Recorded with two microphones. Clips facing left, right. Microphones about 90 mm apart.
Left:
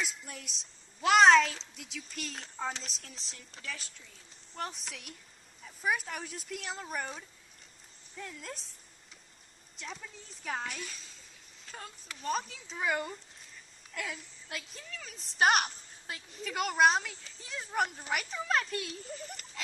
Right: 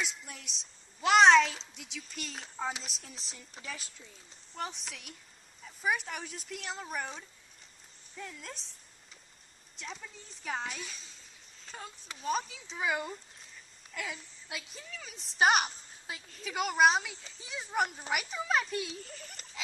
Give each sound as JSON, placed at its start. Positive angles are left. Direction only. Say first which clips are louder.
{"t": 0.0, "sound": "a woman's voice", "louder": "even", "side_deg": 0}
{"t": 3.5, "sound": "a woman's voice", "louder": "even", "side_deg": -15}
{"t": 4.6, "sound": "a woman's voice", "louder": "even", "side_deg": 0}
{"t": 9.8, "sound": "a woman's voice", "louder": "even", "side_deg": 0}